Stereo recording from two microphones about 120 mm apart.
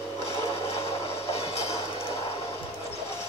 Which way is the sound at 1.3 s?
60° left (ahead or behind).